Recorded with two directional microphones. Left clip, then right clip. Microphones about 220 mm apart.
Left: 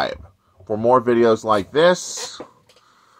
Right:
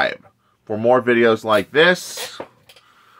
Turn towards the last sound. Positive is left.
turn(degrees=0)  # may be behind; listen again after turning